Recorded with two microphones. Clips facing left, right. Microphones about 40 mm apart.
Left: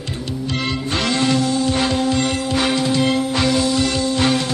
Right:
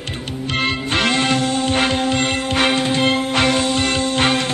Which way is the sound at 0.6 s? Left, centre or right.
Right.